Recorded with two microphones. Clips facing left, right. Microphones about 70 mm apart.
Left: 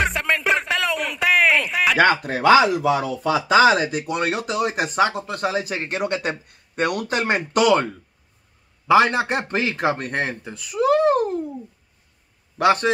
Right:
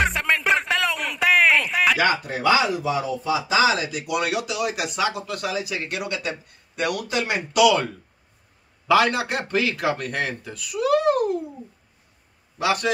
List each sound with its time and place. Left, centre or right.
0.0 s music: centre
2.0 s speech: left
8.8 s a man's voice: left